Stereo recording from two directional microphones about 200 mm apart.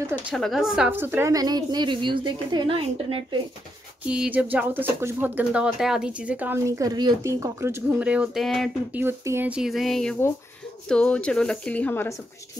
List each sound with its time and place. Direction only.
0.3 s a woman's voice: centre (ahead or behind); by 3.3 s 25° right (ahead or behind)
4.0 s speech: 5° right (ahead or behind)
9.0 s speech: 10° right (ahead or behind); by 12.1 s 10° left (ahead or behind)